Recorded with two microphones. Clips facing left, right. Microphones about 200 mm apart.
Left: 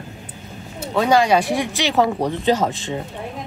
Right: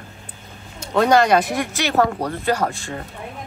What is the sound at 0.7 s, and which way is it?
Speech, 5° left (ahead or behind).